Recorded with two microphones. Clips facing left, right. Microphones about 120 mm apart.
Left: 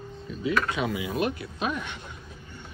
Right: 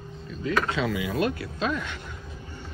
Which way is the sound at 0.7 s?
20° left (ahead or behind).